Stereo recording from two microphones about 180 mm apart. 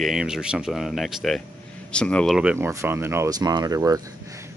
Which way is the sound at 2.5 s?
15° right (ahead or behind).